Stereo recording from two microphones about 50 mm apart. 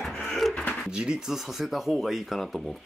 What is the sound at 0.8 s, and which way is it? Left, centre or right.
Speech, centre.